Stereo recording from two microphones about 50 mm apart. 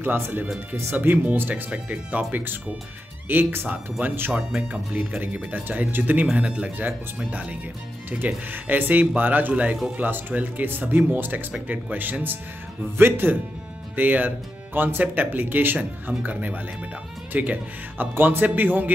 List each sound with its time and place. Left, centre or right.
0.0 s speech: right
1.5 s speech: right
4.9 s speech: right
6.3 s speech: right
8.5 s speech: right